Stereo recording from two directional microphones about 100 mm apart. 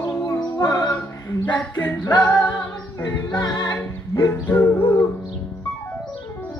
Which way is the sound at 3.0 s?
45° left (ahead or behind).